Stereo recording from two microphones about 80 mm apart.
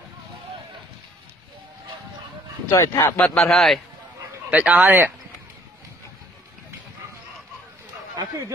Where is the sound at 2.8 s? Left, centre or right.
Left.